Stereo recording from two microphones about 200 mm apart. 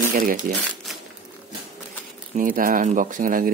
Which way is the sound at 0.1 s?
45° right (ahead or behind).